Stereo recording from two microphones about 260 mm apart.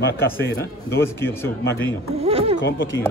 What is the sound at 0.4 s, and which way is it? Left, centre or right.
A man's voice, centre.